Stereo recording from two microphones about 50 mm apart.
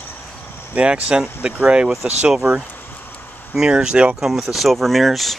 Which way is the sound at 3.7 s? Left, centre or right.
Centre.